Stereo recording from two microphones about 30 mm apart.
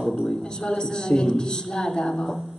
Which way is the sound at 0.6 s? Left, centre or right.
Left.